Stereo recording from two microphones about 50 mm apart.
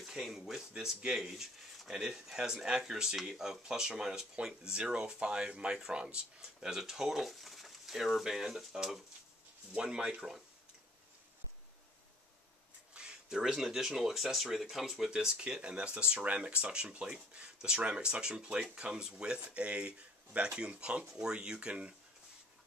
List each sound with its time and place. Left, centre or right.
0.0 s speech: centre
12.9 s a sound: centre
13.5 s speech: centre